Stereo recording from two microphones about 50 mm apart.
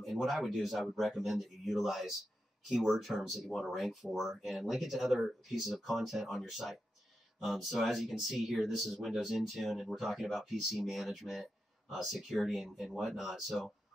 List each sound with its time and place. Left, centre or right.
0.0 s speech: centre